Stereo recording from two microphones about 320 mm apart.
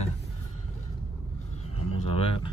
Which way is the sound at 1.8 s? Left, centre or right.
Centre.